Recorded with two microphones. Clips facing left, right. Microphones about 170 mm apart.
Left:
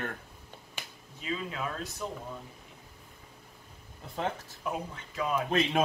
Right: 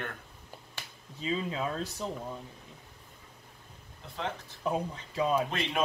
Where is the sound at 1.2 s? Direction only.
25° right (ahead or behind).